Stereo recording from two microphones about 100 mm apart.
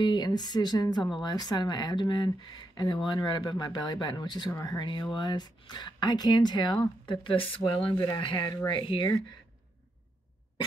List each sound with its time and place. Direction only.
0.0 s speech: 45° left (ahead or behind)
5.1 s speech: 50° left (ahead or behind)
7.9 s speech: 45° left (ahead or behind)
8.2 s speech: 55° left (ahead or behind)